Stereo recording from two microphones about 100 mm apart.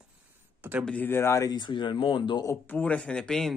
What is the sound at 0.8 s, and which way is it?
Speech, 15° left (ahead or behind).